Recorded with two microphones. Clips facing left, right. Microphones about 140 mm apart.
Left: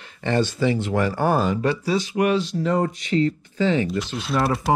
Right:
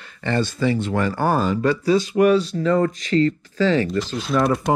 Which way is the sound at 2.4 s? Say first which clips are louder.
Right 2 dB; centre (ahead or behind).